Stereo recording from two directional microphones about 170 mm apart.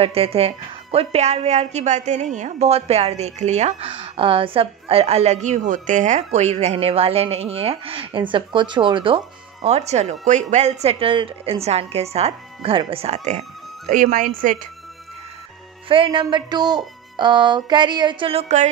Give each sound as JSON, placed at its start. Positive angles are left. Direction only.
{"t": 0.0, "sound": "a woman's voice", "side_deg": -35}
{"t": 15.9, "sound": "speech", "side_deg": -30}